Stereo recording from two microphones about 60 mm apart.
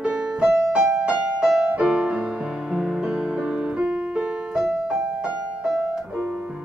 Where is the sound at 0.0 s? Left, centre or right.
Centre.